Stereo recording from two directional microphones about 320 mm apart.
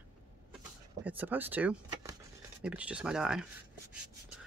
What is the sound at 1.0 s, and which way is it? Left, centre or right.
Speech, centre.